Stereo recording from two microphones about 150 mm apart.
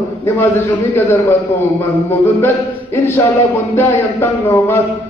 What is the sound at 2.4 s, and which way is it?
Music, 15° left (ahead or behind).